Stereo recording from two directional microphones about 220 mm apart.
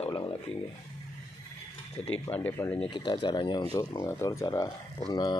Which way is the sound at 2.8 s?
20° left (ahead or behind).